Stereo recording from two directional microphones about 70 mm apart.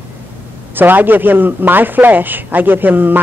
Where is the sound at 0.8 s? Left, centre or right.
Right.